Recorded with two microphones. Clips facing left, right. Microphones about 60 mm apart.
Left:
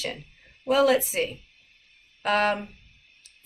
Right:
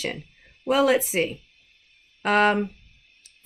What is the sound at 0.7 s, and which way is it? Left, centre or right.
A woman's voice, right.